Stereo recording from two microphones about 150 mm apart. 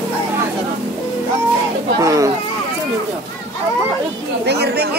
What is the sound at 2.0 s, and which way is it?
Speech, 20° right (ahead or behind).